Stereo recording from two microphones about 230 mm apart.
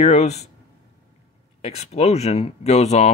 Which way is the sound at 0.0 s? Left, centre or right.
Left.